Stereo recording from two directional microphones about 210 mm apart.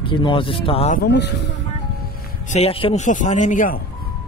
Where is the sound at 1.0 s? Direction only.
55° left (ahead or behind).